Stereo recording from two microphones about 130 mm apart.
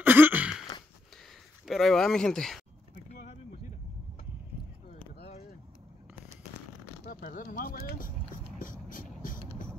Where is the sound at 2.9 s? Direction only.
75° left (ahead or behind).